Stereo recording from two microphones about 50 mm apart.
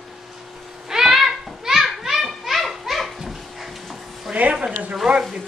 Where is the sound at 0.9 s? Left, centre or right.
Centre.